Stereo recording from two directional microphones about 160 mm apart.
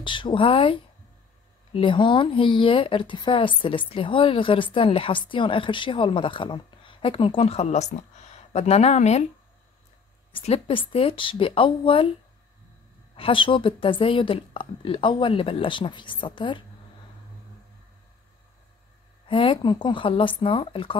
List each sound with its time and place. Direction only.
0.0 s speech: 30° left (ahead or behind)
10.3 s speech: 35° left (ahead or behind)
13.1 s speech: 35° left (ahead or behind)
19.2 s speech: 35° left (ahead or behind)